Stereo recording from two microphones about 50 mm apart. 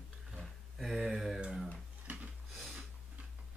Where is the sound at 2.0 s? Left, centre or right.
Right.